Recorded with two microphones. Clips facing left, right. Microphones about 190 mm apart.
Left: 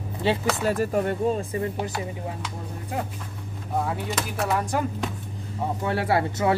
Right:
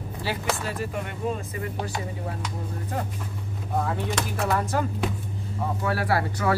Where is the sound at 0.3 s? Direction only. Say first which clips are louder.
Left 7 dB; 25° left (ahead or behind).